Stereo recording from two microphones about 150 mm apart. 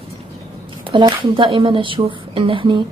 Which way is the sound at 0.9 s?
30° right (ahead or behind).